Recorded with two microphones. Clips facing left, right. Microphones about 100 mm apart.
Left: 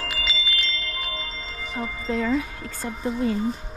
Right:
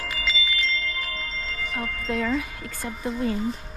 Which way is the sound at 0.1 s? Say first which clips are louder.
Right 1 dB; 5° left (ahead or behind).